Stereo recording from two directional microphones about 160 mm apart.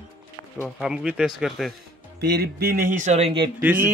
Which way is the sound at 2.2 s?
85° right.